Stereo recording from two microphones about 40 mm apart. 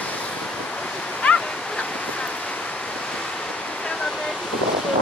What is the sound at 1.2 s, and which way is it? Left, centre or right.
Waterfall, left.